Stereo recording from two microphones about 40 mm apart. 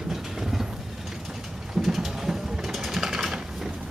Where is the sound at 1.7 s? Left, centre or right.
Centre.